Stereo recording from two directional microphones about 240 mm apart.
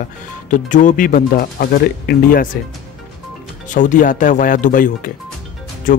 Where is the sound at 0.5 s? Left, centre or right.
Left.